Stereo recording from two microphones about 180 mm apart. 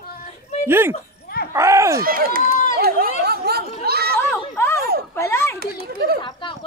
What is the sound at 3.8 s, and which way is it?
Chatter, 60° right (ahead or behind).